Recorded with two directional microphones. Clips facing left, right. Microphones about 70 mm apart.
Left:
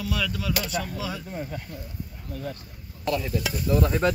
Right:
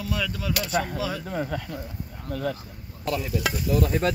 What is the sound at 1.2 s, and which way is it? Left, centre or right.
Speech, right.